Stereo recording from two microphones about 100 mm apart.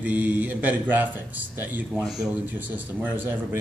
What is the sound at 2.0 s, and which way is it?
Speech, 5° right (ahead or behind).